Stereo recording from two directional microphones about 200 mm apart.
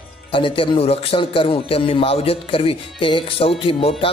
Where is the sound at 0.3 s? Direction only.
25° left (ahead or behind).